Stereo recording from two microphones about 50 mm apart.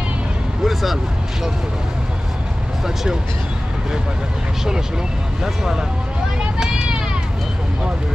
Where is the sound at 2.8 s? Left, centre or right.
Centre.